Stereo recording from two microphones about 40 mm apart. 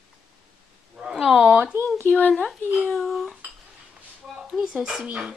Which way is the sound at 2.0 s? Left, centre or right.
Left.